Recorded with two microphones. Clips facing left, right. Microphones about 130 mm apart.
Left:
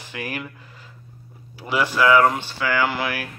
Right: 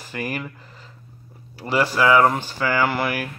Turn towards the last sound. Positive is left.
turn(degrees=-5)  # may be behind; listen again after turning